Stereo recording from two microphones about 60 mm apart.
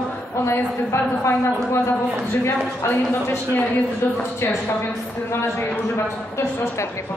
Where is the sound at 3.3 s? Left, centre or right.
Left.